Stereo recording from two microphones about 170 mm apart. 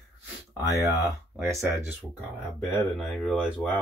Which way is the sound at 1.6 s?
10° right (ahead or behind).